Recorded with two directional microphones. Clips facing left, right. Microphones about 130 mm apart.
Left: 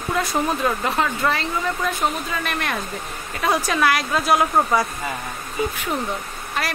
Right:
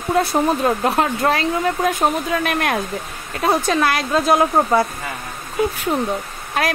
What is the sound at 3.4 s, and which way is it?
A woman's voice, 25° right (ahead or behind).